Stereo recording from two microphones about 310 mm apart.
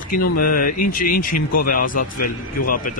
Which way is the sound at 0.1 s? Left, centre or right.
Left.